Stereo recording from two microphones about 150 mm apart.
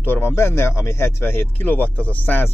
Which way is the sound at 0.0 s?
15° left (ahead or behind).